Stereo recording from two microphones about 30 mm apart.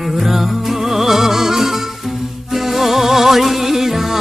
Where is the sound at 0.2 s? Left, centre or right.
Centre.